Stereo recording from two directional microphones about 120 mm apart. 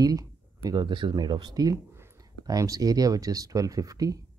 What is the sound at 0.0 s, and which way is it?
Speech, 30° right (ahead or behind).